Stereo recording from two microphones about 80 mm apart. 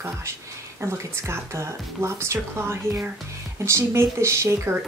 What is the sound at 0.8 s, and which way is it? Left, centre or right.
Speech, right.